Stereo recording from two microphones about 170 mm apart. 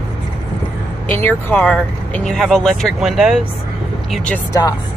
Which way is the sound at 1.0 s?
10° left (ahead or behind).